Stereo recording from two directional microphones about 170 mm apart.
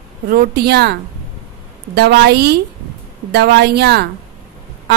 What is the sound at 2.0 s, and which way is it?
A woman's voice, 75° right (ahead or behind).